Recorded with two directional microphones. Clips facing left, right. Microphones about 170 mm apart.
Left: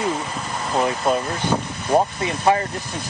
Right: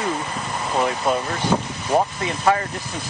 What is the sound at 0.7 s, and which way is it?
Speech, centre (ahead or behind).